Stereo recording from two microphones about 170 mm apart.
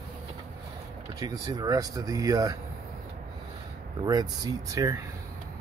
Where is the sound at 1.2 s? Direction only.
20° right (ahead or behind).